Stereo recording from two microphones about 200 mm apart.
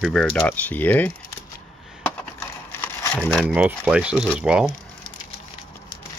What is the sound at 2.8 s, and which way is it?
Crumpling, 10° left (ahead or behind).